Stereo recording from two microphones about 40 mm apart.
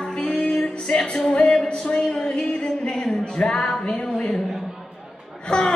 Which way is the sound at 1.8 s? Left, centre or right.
Centre.